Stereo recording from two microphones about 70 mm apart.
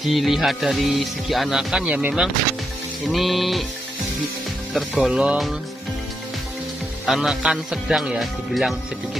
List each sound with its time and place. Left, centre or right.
0.0 s speech: centre
1.9 s speech: centre
3.1 s speech: centre
5.0 s music: centre
7.1 s speech: centre